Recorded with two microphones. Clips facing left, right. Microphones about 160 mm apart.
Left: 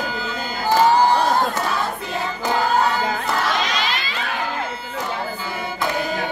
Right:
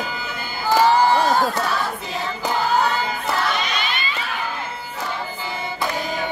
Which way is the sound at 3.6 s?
90° left.